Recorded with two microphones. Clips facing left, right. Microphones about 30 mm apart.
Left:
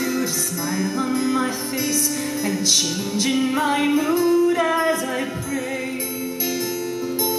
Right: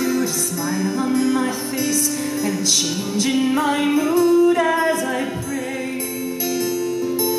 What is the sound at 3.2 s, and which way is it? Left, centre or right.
Music, centre.